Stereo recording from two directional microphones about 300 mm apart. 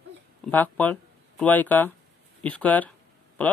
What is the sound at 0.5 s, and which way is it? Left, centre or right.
Speech, centre.